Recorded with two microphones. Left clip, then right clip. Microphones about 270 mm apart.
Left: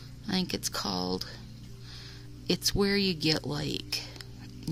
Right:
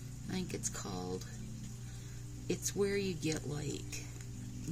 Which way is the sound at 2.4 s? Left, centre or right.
Left.